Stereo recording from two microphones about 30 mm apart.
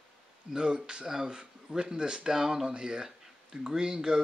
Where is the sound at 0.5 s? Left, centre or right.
Right.